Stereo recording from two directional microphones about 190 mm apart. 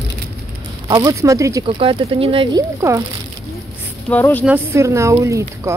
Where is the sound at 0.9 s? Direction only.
15° right (ahead or behind).